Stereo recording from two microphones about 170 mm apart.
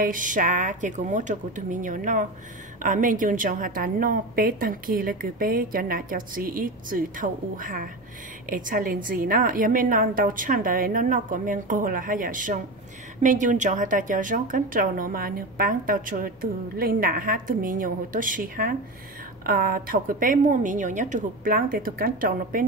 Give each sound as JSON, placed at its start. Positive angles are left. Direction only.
{"t": 0.0, "sound": "a woman's voice", "side_deg": -50}